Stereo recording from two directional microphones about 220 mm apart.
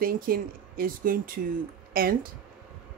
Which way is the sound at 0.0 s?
40° right (ahead or behind).